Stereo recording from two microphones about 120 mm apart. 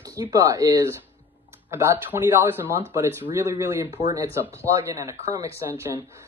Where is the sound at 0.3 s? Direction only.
30° right (ahead or behind).